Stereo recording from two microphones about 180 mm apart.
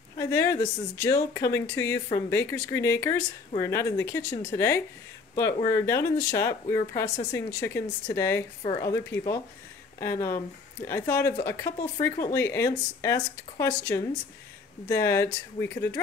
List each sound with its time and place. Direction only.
0.2 s speech: 15° left (ahead or behind)